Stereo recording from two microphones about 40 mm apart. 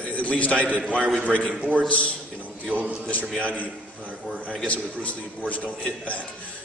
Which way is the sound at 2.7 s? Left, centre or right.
Right.